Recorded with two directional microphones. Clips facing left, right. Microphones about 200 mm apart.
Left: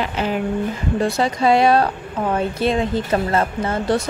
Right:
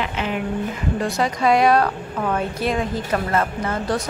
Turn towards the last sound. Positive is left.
turn(degrees=30)  # may be behind; listen again after turning